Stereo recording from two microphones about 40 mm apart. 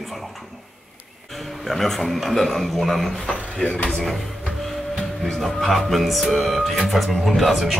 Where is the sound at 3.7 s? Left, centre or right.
Left.